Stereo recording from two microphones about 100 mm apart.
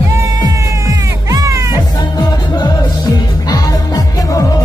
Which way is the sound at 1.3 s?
35° right (ahead or behind).